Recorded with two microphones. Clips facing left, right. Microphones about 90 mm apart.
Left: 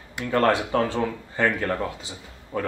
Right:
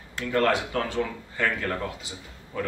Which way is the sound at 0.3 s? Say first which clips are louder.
Left 3 dB; 35° left (ahead or behind).